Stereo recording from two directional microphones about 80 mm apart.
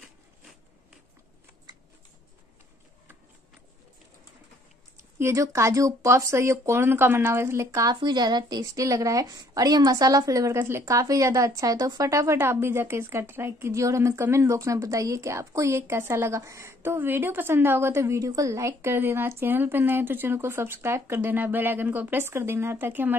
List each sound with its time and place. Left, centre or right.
5.2 s speech: right